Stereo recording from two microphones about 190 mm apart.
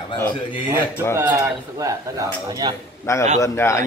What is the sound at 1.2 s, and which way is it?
Speech, 15° right (ahead or behind).